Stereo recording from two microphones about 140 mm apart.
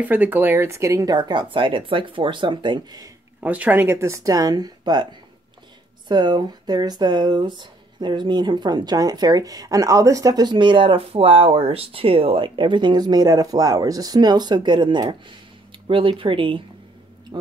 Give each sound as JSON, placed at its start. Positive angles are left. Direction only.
{"t": 0.0, "sound": "speech", "side_deg": -10}
{"t": 3.4, "sound": "speech", "side_deg": -10}
{"t": 6.0, "sound": "speech", "side_deg": -30}
{"t": 17.3, "sound": "a sound", "side_deg": -30}